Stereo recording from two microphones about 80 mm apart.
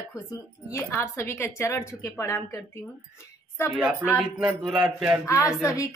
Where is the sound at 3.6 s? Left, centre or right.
Left.